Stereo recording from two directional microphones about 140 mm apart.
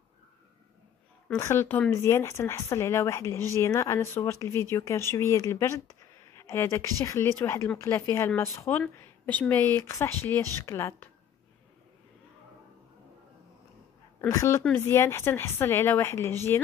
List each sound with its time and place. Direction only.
1.3 s a woman's voice: 20° left (ahead or behind)
14.3 s a woman's voice: 20° left (ahead or behind)